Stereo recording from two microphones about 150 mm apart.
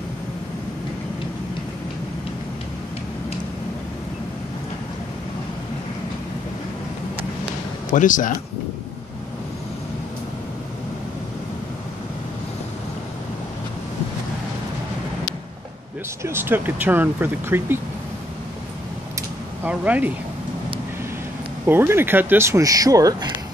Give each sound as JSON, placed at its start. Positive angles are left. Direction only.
{"t": 7.9, "sound": "speech", "side_deg": 60}
{"t": 16.2, "sound": "speech", "side_deg": -15}
{"t": 19.6, "sound": "speech", "side_deg": -10}
{"t": 21.6, "sound": "speech", "side_deg": -15}